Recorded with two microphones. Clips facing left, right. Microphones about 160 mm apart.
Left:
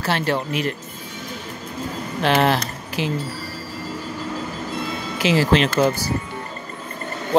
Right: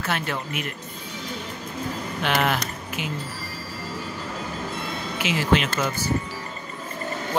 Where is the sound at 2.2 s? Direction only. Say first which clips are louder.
Left 6 dB; 35° left (ahead or behind).